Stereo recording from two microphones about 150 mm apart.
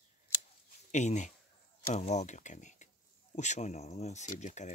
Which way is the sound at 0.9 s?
55° left (ahead or behind).